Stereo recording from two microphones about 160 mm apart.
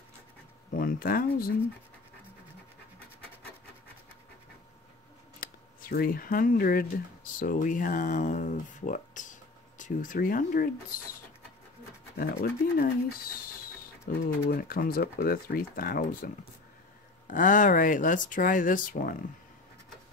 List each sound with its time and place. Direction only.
0.7 s speech: 65° left (ahead or behind)
5.4 s speech: 65° left (ahead or behind)
7.3 s speech: 55° left (ahead or behind)
12.2 s speech: 65° left (ahead or behind)
14.1 s speech: 70° left (ahead or behind)
17.3 s speech: 55° left (ahead or behind)